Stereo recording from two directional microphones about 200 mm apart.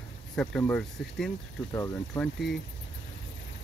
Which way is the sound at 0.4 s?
5° left (ahead or behind).